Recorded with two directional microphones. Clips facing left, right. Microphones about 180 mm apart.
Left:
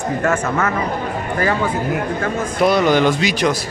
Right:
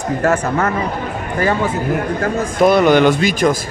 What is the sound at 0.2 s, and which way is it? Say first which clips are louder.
Speech: right 3 dB; 35° right (ahead or behind).